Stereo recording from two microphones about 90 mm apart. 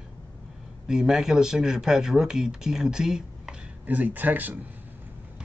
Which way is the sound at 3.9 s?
20° right (ahead or behind).